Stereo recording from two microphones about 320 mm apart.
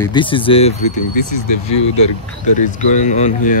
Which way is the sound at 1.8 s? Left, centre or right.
Left.